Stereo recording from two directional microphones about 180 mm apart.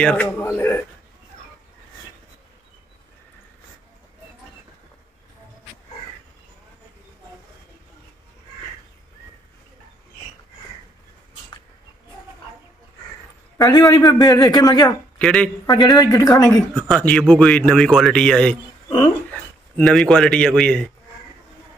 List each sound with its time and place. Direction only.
0.0 s a man's voice: 10° left (ahead or behind)
13.6 s speech: 20° left (ahead or behind)
15.1 s a man's voice: 5° left (ahead or behind)
15.6 s speech: 20° left (ahead or behind)
16.7 s a man's voice: 5° left (ahead or behind)
19.8 s a man's voice: centre (ahead or behind)